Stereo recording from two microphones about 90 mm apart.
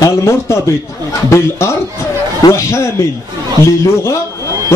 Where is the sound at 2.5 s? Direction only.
30° left (ahead or behind).